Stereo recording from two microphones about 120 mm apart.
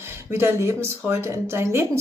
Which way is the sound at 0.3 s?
20° right (ahead or behind).